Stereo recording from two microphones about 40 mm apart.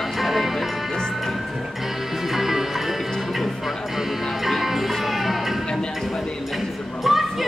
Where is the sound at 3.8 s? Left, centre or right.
Centre.